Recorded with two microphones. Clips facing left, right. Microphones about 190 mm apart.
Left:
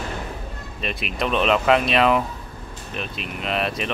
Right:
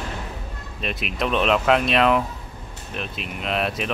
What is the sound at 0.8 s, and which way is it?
Speech, centre (ahead or behind).